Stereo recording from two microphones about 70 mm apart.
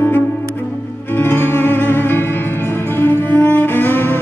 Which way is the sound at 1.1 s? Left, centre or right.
Left.